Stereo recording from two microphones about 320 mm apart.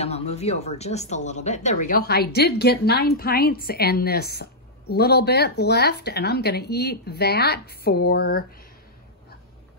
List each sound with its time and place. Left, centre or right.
0.0 s speech: centre